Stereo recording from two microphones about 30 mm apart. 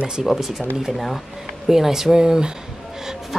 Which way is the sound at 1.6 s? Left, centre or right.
Centre.